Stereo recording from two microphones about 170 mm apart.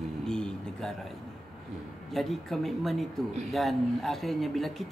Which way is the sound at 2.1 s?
Centre (ahead or behind).